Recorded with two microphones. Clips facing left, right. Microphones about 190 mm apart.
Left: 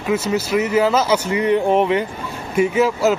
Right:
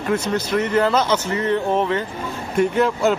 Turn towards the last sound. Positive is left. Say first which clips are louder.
# left 2 dB
turn(degrees=5)  # may be behind; listen again after turning